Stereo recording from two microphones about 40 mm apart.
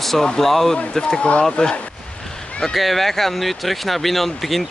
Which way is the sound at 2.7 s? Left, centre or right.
Centre.